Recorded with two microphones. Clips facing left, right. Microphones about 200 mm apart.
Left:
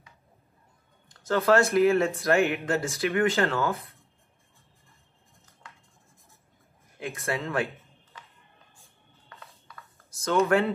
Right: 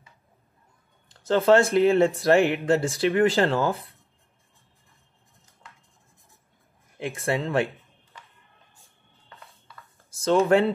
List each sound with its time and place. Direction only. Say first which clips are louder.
1.2 s speech: right 3 dB; 30° right (ahead or behind)
7.0 s speech: right 4 dB; 30° right (ahead or behind)
10.1 s a sound: right 4 dB; 30° right (ahead or behind)